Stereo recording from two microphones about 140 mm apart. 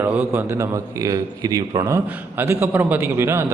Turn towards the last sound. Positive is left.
turn(degrees=-20)  # may be behind; listen again after turning